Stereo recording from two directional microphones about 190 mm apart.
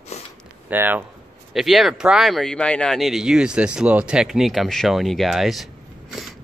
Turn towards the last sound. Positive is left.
turn(degrees=0)  # may be behind; listen again after turning